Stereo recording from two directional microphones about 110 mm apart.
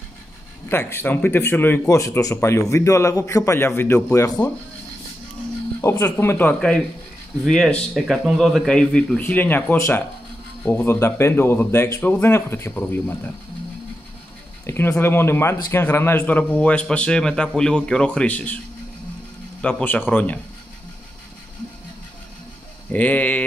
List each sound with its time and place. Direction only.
0.7 s a man's voice: 20° left (ahead or behind)
5.8 s a man's voice: 25° left (ahead or behind)
7.4 s a man's voice: 5° left (ahead or behind); by 13.3 s 20° left (ahead or behind)
14.7 s a man's voice: 20° left (ahead or behind)
19.6 s speech: 15° left (ahead or behind)
22.8 s speech: 15° left (ahead or behind)